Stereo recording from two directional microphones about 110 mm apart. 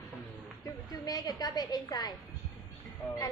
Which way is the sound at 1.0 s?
35° left (ahead or behind).